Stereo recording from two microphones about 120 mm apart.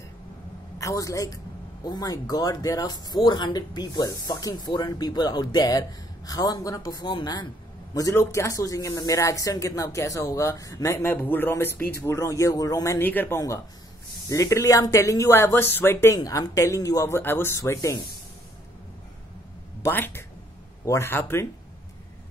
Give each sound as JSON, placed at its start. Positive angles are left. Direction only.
{"t": 0.7, "sound": "speech", "side_deg": 25}
{"t": 7.9, "sound": "speech", "side_deg": 25}
{"t": 19.8, "sound": "speech", "side_deg": 15}